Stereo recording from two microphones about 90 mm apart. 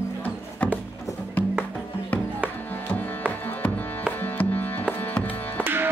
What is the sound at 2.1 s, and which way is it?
Music, 15° left (ahead or behind).